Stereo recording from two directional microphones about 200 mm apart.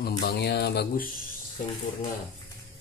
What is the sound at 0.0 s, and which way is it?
Speech, 55° left (ahead or behind).